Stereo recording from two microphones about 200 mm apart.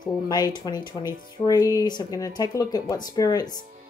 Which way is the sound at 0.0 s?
20° left (ahead or behind).